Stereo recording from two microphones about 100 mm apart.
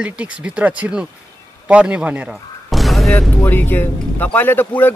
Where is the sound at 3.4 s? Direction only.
20° left (ahead or behind).